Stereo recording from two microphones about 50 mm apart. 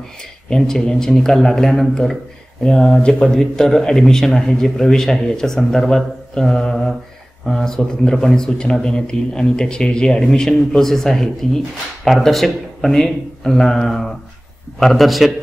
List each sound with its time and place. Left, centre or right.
0.5 s a man's voice: centre